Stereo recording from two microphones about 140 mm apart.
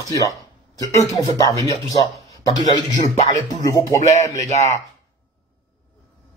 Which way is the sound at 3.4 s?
25° left (ahead or behind).